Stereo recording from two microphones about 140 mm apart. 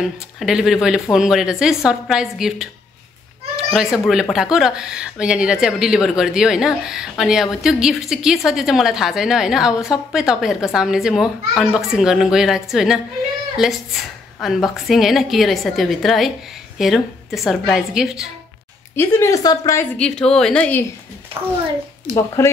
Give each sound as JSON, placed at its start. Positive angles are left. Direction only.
{"t": 0.4, "sound": "speech", "side_deg": -5}
{"t": 18.9, "sound": "a woman's voice", "side_deg": 20}
{"t": 20.0, "sound": "speech", "side_deg": 5}
{"t": 21.3, "sound": "a child's voice", "side_deg": -40}
{"t": 22.1, "sound": "a woman's voice", "side_deg": 20}